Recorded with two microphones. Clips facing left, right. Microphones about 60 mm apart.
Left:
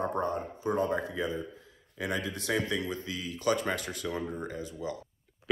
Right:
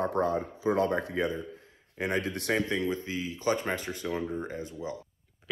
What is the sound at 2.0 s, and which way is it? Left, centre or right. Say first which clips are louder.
Speech: right 3 dB; right.